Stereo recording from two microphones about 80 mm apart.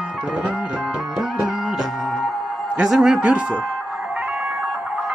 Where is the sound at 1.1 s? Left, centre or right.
Centre.